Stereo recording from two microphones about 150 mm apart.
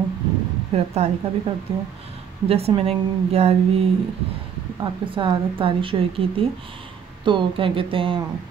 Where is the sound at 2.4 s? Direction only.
40° right (ahead or behind).